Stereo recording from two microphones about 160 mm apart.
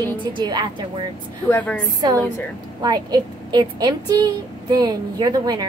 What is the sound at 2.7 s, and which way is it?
A woman's voice, 25° right (ahead or behind).